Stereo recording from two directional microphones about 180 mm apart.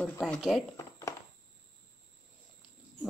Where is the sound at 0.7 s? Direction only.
15° left (ahead or behind).